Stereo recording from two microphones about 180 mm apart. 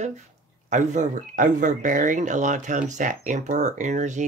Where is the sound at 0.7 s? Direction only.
40° right (ahead or behind).